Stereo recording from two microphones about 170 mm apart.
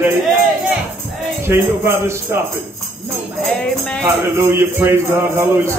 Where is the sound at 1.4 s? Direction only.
15° right (ahead or behind).